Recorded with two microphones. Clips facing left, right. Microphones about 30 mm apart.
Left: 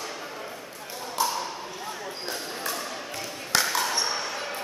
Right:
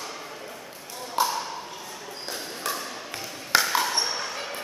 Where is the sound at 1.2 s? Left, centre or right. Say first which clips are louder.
Right 2 dB; centre.